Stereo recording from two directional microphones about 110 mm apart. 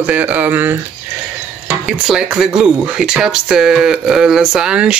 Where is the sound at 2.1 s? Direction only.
5° right (ahead or behind).